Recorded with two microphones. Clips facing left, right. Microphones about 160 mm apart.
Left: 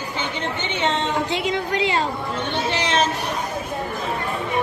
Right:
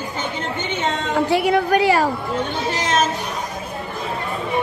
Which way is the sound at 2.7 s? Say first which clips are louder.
Right 2 dB; 40° right (ahead or behind).